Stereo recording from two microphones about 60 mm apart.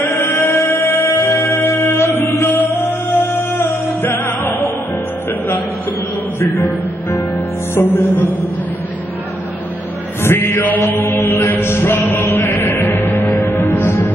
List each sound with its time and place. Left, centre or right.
0.0 s music: left
6.5 s music: left
10.2 s chant: left
12.3 s music: left